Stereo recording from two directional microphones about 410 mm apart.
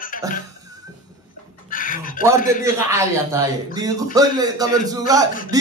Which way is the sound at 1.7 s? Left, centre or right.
Centre.